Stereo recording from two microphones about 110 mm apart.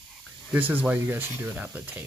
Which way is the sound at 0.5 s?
15° right (ahead or behind).